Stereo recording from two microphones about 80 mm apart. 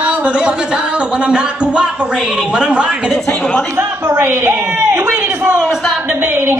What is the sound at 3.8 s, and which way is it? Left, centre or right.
A woman's voice, right.